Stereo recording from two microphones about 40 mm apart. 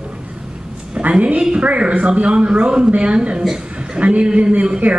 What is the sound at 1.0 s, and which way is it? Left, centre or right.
A man's voice, right.